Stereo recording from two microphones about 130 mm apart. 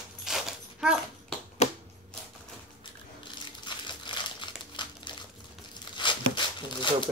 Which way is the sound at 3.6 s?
35° left (ahead or behind).